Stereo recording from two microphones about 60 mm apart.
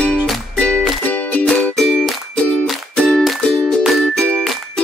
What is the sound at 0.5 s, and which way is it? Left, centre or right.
Music, centre.